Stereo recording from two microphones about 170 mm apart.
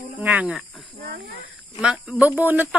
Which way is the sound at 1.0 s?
70° right (ahead or behind).